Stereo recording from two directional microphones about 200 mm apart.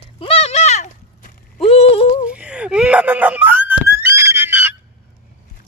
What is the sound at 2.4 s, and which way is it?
Screaming, 5° right (ahead or behind).